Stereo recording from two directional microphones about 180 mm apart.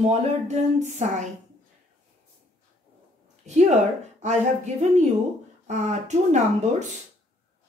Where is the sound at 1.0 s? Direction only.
40° right (ahead or behind).